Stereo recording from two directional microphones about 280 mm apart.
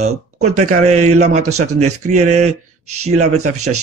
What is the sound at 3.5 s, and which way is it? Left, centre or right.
Speech, right.